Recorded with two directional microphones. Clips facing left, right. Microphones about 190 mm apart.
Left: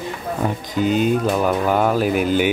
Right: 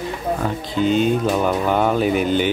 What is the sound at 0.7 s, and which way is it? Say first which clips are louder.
Speech: right 1 dB; 5° left (ahead or behind).